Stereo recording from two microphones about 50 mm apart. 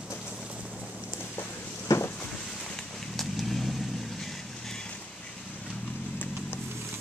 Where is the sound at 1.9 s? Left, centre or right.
Left.